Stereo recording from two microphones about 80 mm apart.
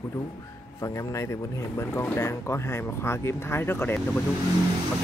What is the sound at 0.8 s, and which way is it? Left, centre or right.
Speech, left.